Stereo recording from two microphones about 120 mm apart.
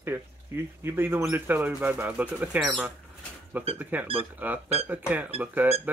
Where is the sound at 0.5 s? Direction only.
20° right (ahead or behind).